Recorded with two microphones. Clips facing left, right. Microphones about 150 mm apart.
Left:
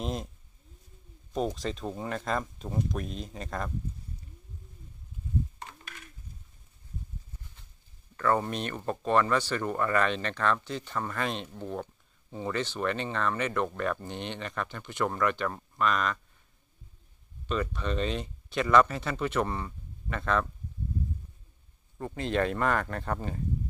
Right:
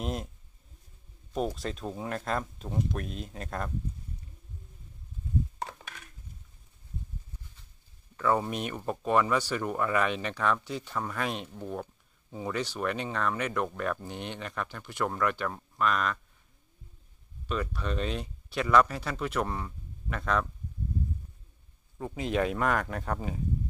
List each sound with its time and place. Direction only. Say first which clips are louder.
0.0 s speech: even; 5° right (ahead or behind)
1.3 s speech: left 1 dB; 5° right (ahead or behind)
5.6 s a sound: right 7 dB; 90° right
8.2 s speech: even; 10° right (ahead or behind)
17.5 s speech: left 2 dB; 5° right (ahead or behind)
21.9 s speech: even; 5° right (ahead or behind)